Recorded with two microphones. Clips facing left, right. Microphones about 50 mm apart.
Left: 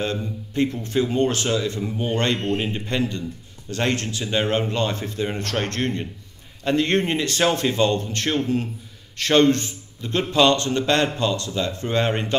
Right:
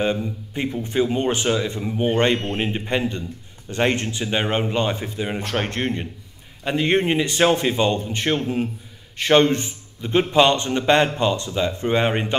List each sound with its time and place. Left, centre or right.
0.0 s a man's voice: centre